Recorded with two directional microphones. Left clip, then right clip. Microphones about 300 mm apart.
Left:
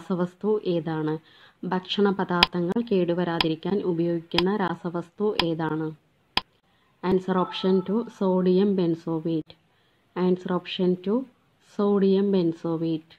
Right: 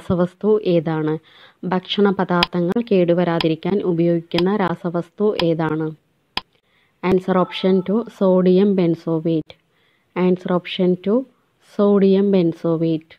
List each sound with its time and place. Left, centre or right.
0.1 s speech: right
6.4 s a sound: centre
7.0 s speech: right